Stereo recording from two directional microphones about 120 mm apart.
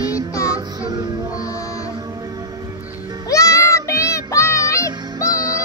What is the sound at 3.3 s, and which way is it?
Music, 25° left (ahead or behind).